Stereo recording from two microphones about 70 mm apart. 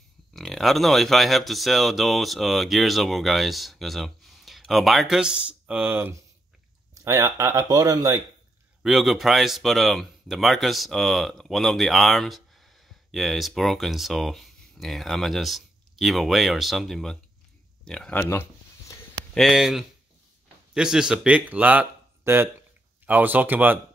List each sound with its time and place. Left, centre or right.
0.3 s speech: centre
5.9 s speech: right
7.1 s speech: right
7.5 s speech: right
8.8 s speech: centre
19.3 s a man's voice: centre
21.4 s speech: right
22.2 s speech: right
23.0 s speech: right